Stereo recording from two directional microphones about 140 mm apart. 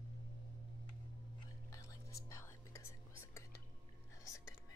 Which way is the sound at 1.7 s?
20° left (ahead or behind).